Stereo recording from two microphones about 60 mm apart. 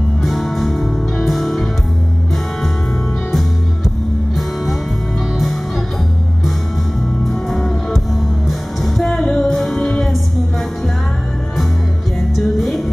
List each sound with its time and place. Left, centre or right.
0.2 s music: centre
7.2 s music: centre
9.8 s music: centre
12.4 s music: centre